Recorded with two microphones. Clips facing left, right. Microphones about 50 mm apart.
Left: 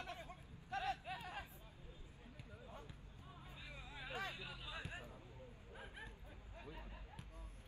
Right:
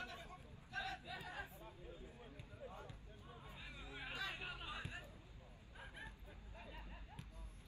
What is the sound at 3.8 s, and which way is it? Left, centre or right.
Hubbub, right.